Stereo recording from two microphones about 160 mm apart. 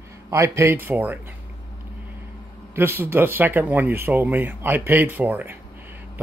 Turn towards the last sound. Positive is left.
turn(degrees=-10)  # may be behind; listen again after turning